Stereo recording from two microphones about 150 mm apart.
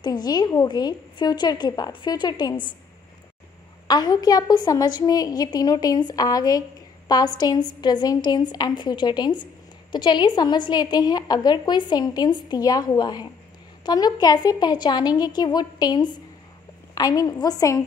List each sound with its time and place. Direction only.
0.0 s a woman's voice: 25° left (ahead or behind)
3.8 s a woman's voice: 25° left (ahead or behind)